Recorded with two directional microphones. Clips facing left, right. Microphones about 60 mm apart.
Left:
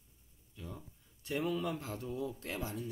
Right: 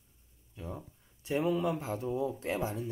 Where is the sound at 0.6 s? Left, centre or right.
Right.